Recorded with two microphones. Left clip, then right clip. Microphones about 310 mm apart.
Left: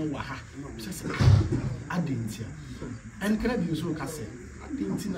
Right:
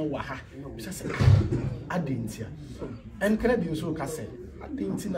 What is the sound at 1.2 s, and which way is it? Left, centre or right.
Speech, left.